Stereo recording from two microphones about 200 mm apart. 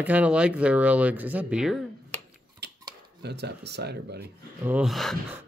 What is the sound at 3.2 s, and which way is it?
Speech, 55° right (ahead or behind).